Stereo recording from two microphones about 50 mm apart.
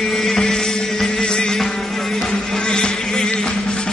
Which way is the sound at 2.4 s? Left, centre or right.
Centre.